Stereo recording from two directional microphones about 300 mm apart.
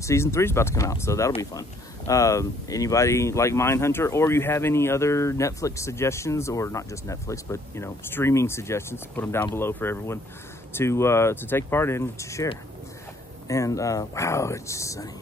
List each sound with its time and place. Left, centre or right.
0.0 s speech: centre